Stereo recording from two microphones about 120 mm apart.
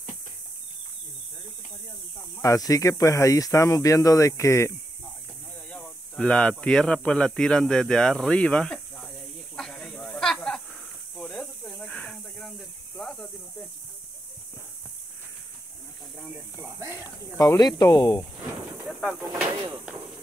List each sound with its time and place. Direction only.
2.3 s speech: 30° left (ahead or behind)
5.7 s speech: 10° left (ahead or behind)
9.6 s snake: 5° left (ahead or behind)
16.6 s snake: 20° right (ahead or behind)
17.4 s speech: 30° left (ahead or behind)
18.9 s a sound: 5° right (ahead or behind)